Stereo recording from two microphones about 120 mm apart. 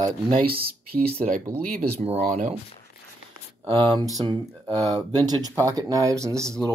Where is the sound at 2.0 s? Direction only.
70° right (ahead or behind).